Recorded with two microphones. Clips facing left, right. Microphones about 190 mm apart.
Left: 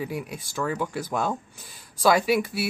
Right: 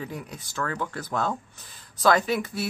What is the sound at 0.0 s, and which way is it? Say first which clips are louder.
Speech: left 4 dB; 10° left (ahead or behind).